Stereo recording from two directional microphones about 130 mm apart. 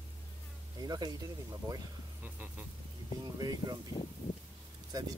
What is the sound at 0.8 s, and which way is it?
Speech, 30° right (ahead or behind).